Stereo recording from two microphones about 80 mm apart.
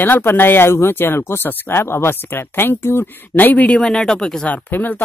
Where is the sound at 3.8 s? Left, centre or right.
Centre.